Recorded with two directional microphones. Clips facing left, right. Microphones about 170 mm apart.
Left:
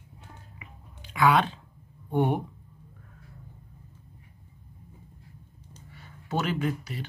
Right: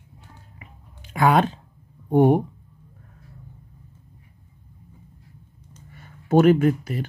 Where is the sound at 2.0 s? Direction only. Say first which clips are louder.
Right 9 dB; 40° right (ahead or behind).